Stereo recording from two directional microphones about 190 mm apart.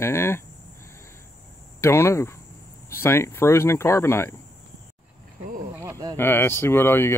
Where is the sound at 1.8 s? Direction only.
15° left (ahead or behind).